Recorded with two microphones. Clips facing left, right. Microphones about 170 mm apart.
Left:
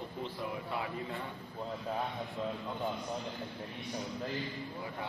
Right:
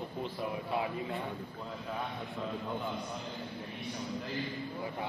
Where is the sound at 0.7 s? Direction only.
20° right (ahead or behind).